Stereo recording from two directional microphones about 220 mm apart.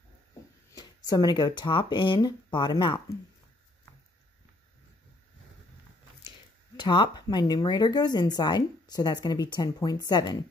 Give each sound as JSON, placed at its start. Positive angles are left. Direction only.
{"t": 0.7, "sound": "speech", "side_deg": 15}
{"t": 6.8, "sound": "speech", "side_deg": 20}